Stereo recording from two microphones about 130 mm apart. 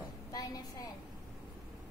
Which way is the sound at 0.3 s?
30° left (ahead or behind).